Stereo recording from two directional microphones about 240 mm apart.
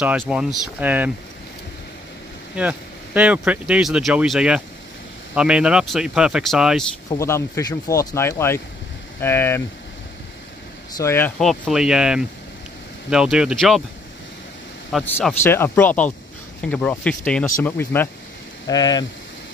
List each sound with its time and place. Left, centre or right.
0.3 s speech: centre
3.2 s speech: centre
7.1 s speech: centre
11.0 s speech: centre
14.9 s speech: centre